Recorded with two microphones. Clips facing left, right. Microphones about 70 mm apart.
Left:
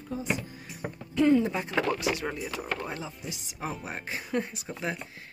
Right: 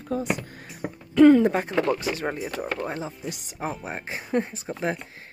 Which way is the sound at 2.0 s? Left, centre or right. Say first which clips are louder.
Right 2 dB; right.